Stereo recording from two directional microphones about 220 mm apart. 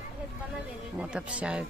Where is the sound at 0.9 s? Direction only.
5° right (ahead or behind).